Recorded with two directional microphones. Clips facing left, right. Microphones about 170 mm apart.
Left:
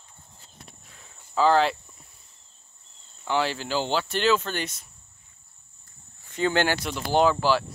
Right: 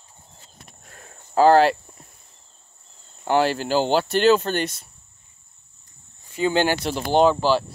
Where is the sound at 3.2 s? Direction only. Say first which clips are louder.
Right 6 dB; 50° right (ahead or behind).